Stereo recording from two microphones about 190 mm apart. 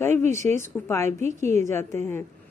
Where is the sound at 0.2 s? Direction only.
40° right (ahead or behind).